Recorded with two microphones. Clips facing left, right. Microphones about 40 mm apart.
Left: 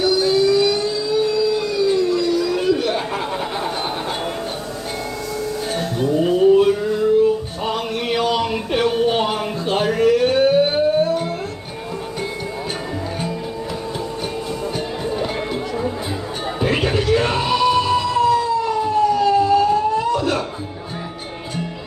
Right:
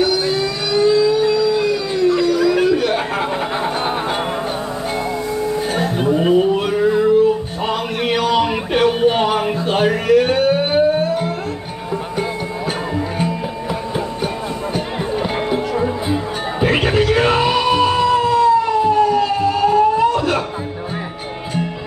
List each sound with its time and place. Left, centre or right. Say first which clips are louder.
0.0 s music: left 1 dB; right
1.5 s howl: right 1 dB; right
2.4 s chatter: right 6 dB; right
5.4 s music: right 4 dB; right
8.4 s music: right 4 dB; right
15.5 s music: right 5 dB; right